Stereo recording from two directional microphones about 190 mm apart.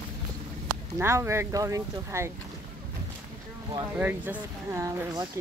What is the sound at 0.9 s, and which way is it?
Speech, 15° right (ahead or behind).